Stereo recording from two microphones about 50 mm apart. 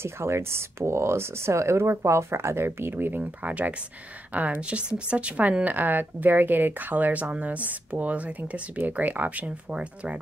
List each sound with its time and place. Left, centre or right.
0.0 s a woman's voice: right
4.6 s speech: right